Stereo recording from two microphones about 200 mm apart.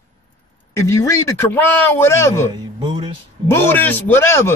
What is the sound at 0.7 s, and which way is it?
A man's voice, 15° left (ahead or behind).